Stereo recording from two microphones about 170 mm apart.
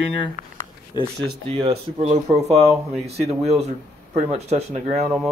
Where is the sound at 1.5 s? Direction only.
35° right (ahead or behind).